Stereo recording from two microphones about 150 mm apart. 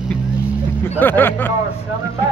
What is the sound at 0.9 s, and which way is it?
Speech, 15° left (ahead or behind).